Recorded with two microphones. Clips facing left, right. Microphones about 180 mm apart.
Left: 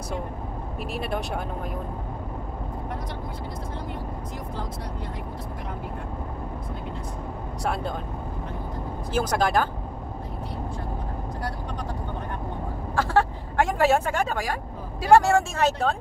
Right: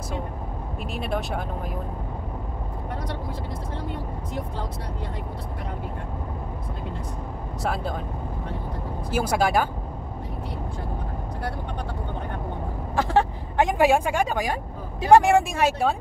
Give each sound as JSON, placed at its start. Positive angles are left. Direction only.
{"t": 0.9, "sound": "speech", "side_deg": 0}
{"t": 7.6, "sound": "speech", "side_deg": 0}
{"t": 9.1, "sound": "speech", "side_deg": -10}
{"t": 12.9, "sound": "speech", "side_deg": -20}